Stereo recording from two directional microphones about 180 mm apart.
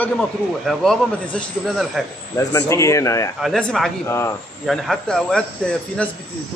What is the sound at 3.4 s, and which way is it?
Speech, centre (ahead or behind).